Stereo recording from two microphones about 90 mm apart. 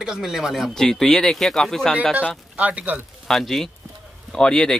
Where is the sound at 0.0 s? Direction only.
5° right (ahead or behind).